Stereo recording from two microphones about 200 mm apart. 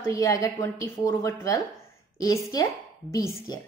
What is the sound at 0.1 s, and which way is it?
A woman's voice, 15° left (ahead or behind).